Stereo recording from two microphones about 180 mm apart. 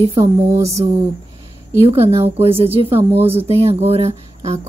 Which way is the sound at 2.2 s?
30° right (ahead or behind).